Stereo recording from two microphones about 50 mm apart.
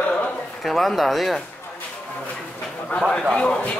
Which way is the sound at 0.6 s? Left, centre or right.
Centre.